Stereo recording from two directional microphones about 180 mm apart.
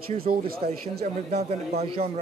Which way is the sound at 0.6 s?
40° right (ahead or behind).